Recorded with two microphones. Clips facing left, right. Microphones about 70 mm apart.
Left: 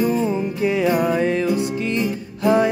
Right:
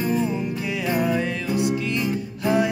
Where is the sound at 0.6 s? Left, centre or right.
Left.